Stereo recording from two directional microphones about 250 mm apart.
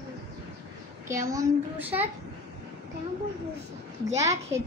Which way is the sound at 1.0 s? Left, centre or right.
Centre.